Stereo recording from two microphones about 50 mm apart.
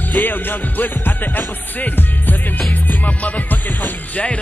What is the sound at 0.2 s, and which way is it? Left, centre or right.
Music, left.